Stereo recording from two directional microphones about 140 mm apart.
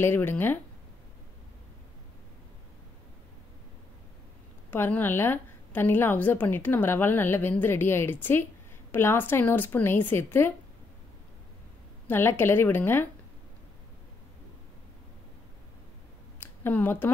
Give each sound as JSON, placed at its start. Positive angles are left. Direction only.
{"t": 0.0, "sound": "a woman's voice", "side_deg": 15}
{"t": 4.6, "sound": "a woman's voice", "side_deg": 15}
{"t": 12.1, "sound": "a woman's voice", "side_deg": 15}
{"t": 16.3, "sound": "a sound", "side_deg": 15}